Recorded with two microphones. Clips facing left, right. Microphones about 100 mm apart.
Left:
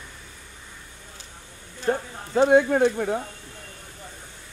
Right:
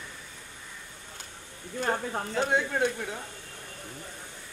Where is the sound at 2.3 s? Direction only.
55° left (ahead or behind).